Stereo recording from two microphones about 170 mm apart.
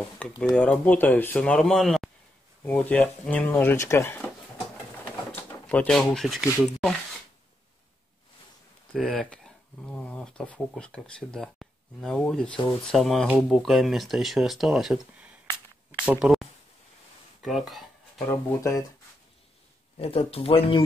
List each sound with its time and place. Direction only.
0.2 s speech: 5° left (ahead or behind)
5.0 s a sound: 10° left (ahead or behind)
8.9 s speech: 5° left (ahead or behind)
12.5 s speech: 30° left (ahead or behind)
12.9 s speech: centre (ahead or behind)
17.4 s a sound: centre (ahead or behind)
18.3 s speech: 20° left (ahead or behind)
20.0 s speech: 35° left (ahead or behind)